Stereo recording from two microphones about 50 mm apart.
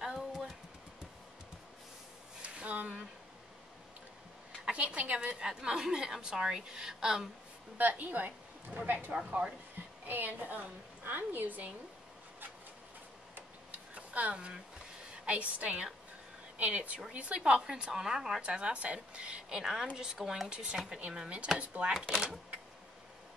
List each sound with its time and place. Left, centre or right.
0.0 s a sound: centre
2.4 s a sound: right
4.6 s a woman's voice: right
7.7 s a woman's voice: right
13.3 s tick-tock: right
15.2 s a woman's voice: right; by 18.4 s centre
18.4 s a woman's voice: right
22.1 s a woman's voice: centre